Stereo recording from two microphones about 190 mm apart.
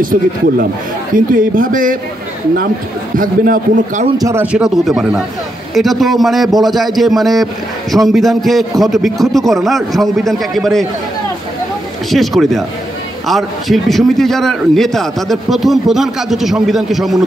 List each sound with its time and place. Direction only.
0.0 s a man's voice: 45° right (ahead or behind)
3.2 s a man's voice: 45° right (ahead or behind)
4.2 s a man's voice: 15° right (ahead or behind)
12.1 s a man's voice: centre (ahead or behind)